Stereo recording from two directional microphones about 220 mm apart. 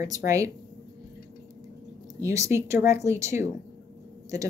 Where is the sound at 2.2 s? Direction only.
15° right (ahead or behind).